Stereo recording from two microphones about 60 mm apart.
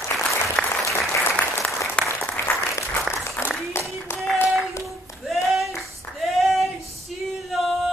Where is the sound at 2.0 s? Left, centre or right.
Centre.